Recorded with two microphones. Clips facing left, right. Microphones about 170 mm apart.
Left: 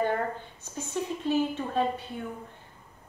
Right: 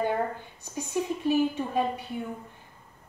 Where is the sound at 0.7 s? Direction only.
15° right (ahead or behind).